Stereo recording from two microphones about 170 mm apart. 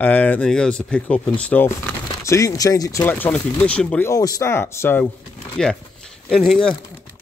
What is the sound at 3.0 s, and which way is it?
Speech, 10° left (ahead or behind).